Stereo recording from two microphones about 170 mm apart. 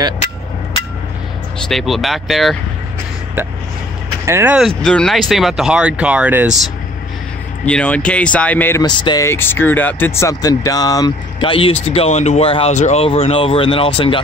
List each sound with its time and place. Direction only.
1.6 s speech: centre (ahead or behind)
4.3 s speech: 15° right (ahead or behind)
4.6 s speech: 5° left (ahead or behind)
7.6 s speech: 5° left (ahead or behind)
8.8 s speech: 25° left (ahead or behind)